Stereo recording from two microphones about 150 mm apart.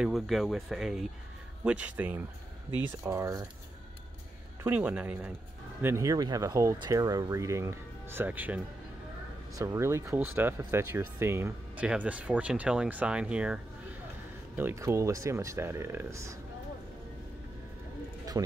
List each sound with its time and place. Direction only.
0.0 s speech: centre (ahead or behind); by 3.4 s 20° right (ahead or behind)
4.6 s speech: 10° right (ahead or behind)
9.6 s speech: 20° right (ahead or behind)
14.6 s speech: 15° right (ahead or behind)